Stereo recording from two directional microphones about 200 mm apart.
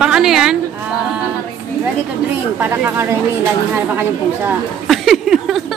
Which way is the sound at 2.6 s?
10° right (ahead or behind).